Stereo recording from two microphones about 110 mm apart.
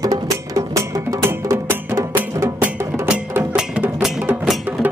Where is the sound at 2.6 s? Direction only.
10° right (ahead or behind).